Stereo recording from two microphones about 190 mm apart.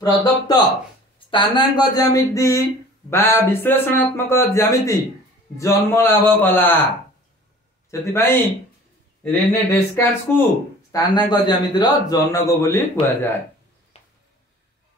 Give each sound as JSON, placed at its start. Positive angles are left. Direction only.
{"t": 0.0, "sound": "a man's voice", "side_deg": 20}
{"t": 7.9, "sound": "a man's voice", "side_deg": 15}
{"t": 13.9, "sound": "a sound", "side_deg": 35}